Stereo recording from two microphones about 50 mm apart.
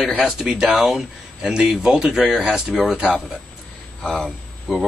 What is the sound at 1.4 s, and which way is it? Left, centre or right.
Speech, centre.